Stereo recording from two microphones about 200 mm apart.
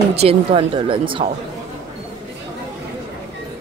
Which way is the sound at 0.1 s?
30° right (ahead or behind).